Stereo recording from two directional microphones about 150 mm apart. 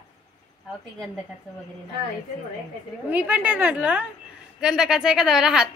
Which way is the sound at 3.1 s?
10° right (ahead or behind).